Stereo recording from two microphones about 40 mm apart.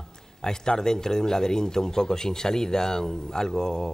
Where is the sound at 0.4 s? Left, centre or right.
Centre.